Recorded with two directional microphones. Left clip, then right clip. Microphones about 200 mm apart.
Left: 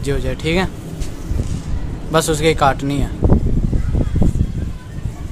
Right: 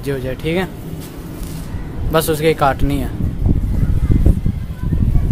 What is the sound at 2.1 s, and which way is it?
Speech, 10° left (ahead or behind).